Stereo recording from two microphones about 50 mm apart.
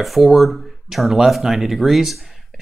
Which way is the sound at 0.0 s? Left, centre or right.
Centre.